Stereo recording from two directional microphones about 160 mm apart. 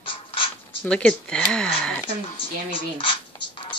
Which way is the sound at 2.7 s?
35° left (ahead or behind).